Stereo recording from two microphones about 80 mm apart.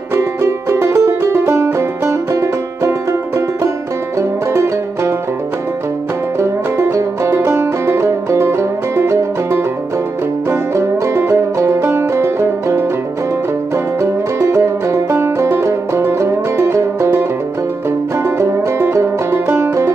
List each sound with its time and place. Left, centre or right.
0.1 s music: right
6.4 s music: right
14.4 s music: right